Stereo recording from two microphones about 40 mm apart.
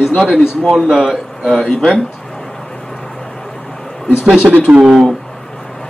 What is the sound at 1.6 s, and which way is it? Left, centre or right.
Speech, left.